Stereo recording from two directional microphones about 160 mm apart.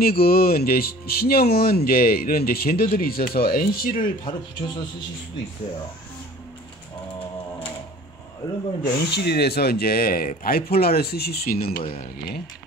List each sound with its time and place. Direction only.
0.0 s speech: 70° left (ahead or behind)
4.2 s speech: 30° left (ahead or behind)
8.8 s speech: 90° left; by 11.8 s 65° left (ahead or behind)